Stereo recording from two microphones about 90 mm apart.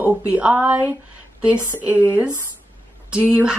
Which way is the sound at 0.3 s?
15° right (ahead or behind).